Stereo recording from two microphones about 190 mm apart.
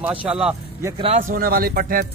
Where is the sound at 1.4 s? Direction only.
50° right (ahead or behind).